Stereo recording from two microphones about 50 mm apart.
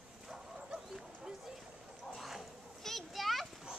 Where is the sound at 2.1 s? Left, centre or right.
Centre.